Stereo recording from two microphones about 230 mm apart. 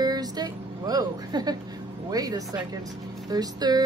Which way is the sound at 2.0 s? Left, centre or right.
Centre.